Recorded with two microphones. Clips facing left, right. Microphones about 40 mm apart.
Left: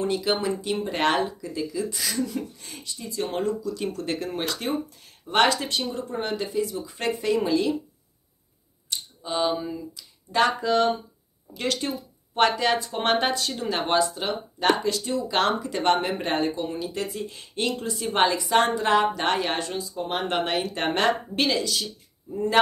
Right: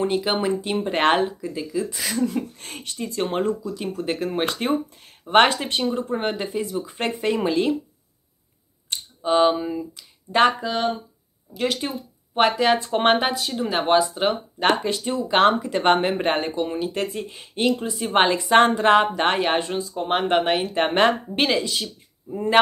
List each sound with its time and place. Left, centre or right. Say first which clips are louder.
0.0 s speech: right 3 dB; right
2.6 s speech: right 6 dB; right
3.7 s speech: right 2 dB; centre; by 7.7 s right
8.9 s speech: right 8 dB; right
10.6 s speech: left 2 dB; centre
12.7 s speech: right 6 dB; right
13.1 s speech: right 3 dB; centre
14.1 s speech: right 6 dB; right
18.1 s speech: right 4 dB; right
20.2 s speech: right 5 dB; right